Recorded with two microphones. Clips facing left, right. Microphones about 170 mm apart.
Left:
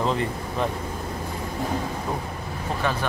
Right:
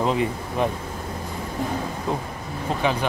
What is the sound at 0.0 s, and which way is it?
Speech, 15° right (ahead or behind).